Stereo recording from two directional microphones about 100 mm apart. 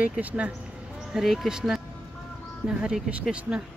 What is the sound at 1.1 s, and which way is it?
Speech, centre (ahead or behind).